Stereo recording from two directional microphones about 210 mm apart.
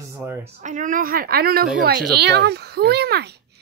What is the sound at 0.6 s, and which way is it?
A woman's voice, 35° right (ahead or behind).